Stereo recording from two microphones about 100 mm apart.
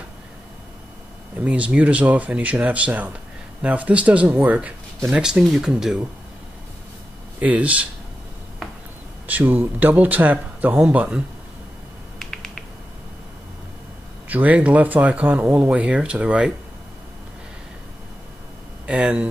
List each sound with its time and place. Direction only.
1.4 s speech: 15° right (ahead or behind)
7.3 s speech: 15° right (ahead or behind)
9.3 s speech: 20° right (ahead or behind)
12.2 s finger snapping: 5° left (ahead or behind)
14.3 s speech: 15° right (ahead or behind)
18.9 s speech: 10° right (ahead or behind)